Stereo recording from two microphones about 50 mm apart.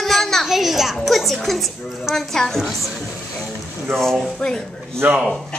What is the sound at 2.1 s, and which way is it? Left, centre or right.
Speech, centre.